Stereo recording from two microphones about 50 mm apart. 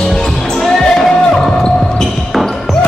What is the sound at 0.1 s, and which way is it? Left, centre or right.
Basketball bounce, centre.